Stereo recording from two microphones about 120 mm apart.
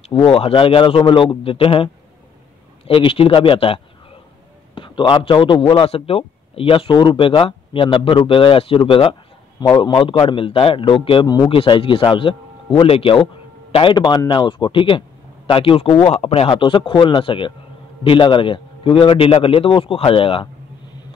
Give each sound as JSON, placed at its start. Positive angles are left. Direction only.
{"t": 0.1, "sound": "a man's voice", "side_deg": 50}
{"t": 2.9, "sound": "a man's voice", "side_deg": 50}
{"t": 9.6, "sound": "a man's voice", "side_deg": 35}